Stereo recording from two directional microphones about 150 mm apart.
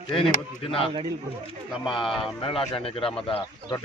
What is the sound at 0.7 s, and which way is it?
Speech, 35° left (ahead or behind).